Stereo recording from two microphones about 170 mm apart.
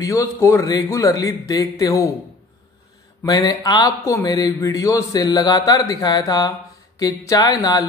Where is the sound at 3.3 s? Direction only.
25° left (ahead or behind).